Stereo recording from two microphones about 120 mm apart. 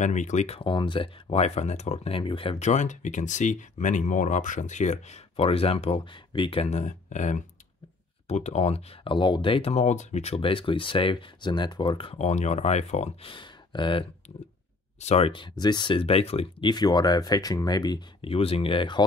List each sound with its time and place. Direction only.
0.0 s speech: 85° left
0.6 s speech: 45° left (ahead or behind); by 2.1 s 70° left (ahead or behind)
2.1 s speech: 50° left (ahead or behind)
2.6 s speech: 85° left
8.3 s speech: 65° left (ahead or behind); by 12.2 s 45° left (ahead or behind)
12.2 s speech: 70° left (ahead or behind)
13.2 s speech: 45° left (ahead or behind)
15.0 s speech: 60° left (ahead or behind)
16.6 s speech: 35° left (ahead or behind)
18.2 s speech: 50° left (ahead or behind)